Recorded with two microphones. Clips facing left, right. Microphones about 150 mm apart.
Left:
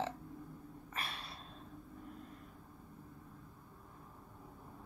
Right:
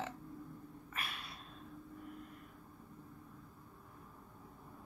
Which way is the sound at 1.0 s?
35° left (ahead or behind).